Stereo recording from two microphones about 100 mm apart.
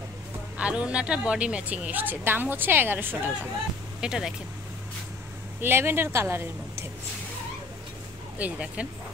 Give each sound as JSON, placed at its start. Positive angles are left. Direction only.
{"t": 0.6, "sound": "a woman's voice", "side_deg": -10}
{"t": 4.0, "sound": "speech", "side_deg": -5}
{"t": 5.6, "sound": "speech", "side_deg": -20}
{"t": 8.4, "sound": "a woman's voice", "side_deg": -15}